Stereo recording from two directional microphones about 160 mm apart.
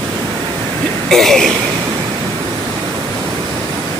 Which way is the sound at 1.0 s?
Centre (ahead or behind).